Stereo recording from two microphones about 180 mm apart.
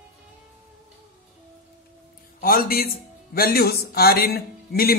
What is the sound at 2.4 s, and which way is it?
A man's voice, 55° left (ahead or behind).